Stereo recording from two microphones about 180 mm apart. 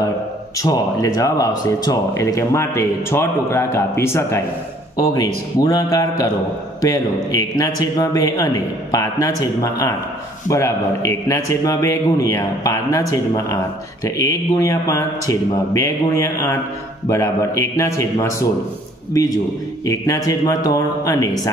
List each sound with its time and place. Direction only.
0.6 s a man's voice: 20° left (ahead or behind)
14.0 s a man's voice: 15° left (ahead or behind)